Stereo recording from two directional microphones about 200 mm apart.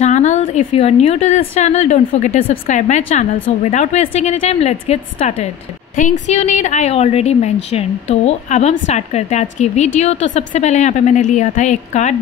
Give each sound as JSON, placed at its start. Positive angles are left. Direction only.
{"t": 0.0, "sound": "a woman's voice", "side_deg": 35}